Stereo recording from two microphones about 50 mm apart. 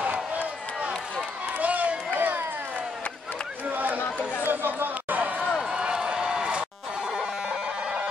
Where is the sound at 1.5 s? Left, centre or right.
Right.